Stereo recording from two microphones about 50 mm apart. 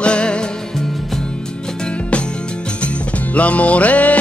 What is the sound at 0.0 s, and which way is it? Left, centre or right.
Music, left.